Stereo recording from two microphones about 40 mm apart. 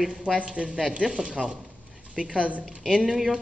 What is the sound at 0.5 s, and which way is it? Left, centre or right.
Speech, centre.